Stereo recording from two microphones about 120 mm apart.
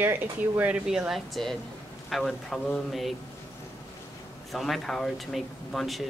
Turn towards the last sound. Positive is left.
turn(degrees=0)  # may be behind; listen again after turning